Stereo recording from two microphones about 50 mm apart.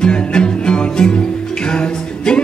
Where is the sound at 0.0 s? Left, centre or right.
Centre.